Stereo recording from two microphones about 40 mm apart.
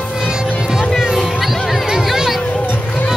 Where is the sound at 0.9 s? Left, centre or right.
Centre.